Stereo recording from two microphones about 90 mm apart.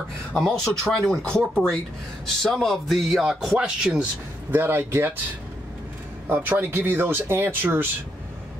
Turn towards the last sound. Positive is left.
turn(degrees=-25)  # may be behind; listen again after turning